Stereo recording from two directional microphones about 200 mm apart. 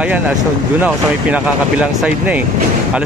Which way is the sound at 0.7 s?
5° right (ahead or behind).